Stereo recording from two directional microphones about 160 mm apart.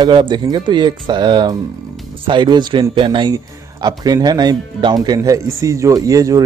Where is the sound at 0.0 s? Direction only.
30° right (ahead or behind).